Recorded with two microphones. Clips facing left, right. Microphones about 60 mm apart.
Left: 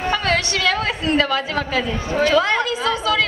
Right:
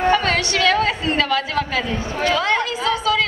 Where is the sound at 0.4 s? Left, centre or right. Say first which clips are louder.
Right 3 dB; left.